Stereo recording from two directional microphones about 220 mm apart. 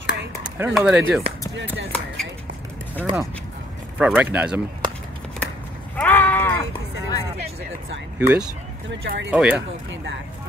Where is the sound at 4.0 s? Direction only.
5° right (ahead or behind).